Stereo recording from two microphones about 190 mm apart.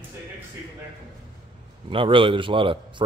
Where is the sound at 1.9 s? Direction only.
25° right (ahead or behind).